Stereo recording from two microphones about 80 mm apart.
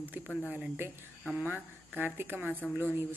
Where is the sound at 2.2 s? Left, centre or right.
Right.